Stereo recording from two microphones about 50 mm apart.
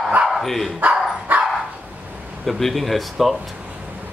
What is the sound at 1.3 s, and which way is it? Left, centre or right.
Dog, right.